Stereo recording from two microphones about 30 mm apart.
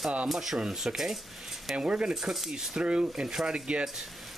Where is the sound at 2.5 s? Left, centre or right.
Centre.